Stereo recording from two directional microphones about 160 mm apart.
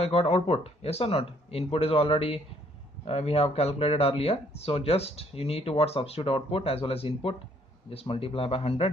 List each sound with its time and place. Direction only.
0.0 s speech: 40° left (ahead or behind)